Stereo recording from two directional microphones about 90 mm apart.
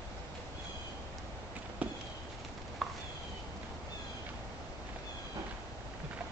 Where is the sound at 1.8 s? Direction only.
15° right (ahead or behind).